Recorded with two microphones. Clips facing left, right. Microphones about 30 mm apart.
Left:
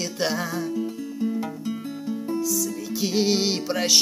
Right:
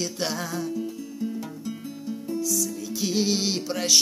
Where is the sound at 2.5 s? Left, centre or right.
Centre.